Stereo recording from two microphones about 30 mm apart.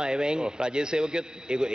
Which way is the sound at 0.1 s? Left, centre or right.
Right.